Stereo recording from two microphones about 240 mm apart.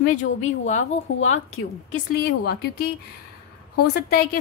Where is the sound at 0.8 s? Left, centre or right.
Left.